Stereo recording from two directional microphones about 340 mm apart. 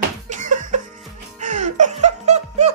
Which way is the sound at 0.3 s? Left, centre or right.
Right.